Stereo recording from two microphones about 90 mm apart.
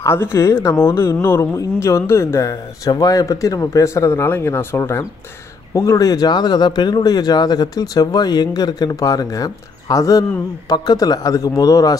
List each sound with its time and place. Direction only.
0.0 s speech: 30° left (ahead or behind)